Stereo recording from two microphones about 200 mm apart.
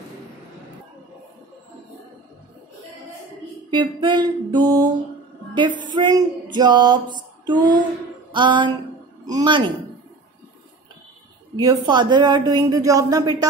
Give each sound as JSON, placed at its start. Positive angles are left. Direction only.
{"t": 3.7, "sound": "speech", "side_deg": -25}
{"t": 8.3, "sound": "a sound", "side_deg": -25}
{"t": 9.2, "sound": "speech", "side_deg": -20}
{"t": 11.5, "sound": "speech", "side_deg": -20}